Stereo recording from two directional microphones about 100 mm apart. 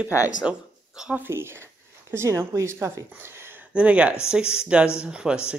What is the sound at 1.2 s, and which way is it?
Speech, 25° right (ahead or behind).